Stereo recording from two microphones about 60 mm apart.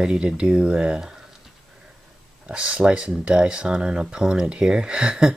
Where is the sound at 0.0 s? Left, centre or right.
Centre.